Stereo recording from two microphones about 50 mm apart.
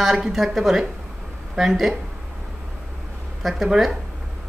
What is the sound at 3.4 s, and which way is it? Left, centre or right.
Speech, centre.